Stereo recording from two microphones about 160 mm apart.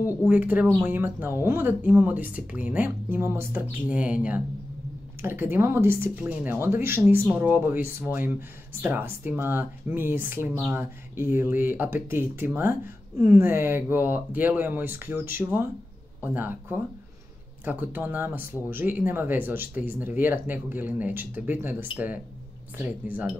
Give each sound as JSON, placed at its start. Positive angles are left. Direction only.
{"t": 0.3, "sound": "speech", "side_deg": -10}